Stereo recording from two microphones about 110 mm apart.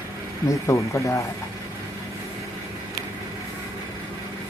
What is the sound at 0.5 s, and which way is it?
Speech, 25° left (ahead or behind).